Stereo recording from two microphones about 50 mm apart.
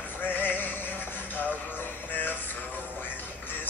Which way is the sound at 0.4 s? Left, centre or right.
Left.